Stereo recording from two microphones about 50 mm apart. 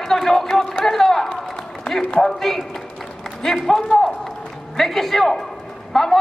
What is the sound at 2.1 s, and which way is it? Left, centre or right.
A man's voice, centre.